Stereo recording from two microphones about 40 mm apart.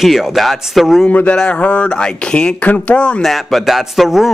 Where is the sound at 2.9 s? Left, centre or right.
Left.